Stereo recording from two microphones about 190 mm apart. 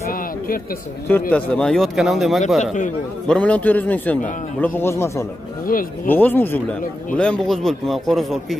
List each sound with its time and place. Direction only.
1.3 s a man's voice: 5° left (ahead or behind)
2.6 s a man's voice: 40° left (ahead or behind)
3.3 s a man's voice: 5° left (ahead or behind)
5.7 s speech: 50° left (ahead or behind)
6.0 s a man's voice: 10° left (ahead or behind)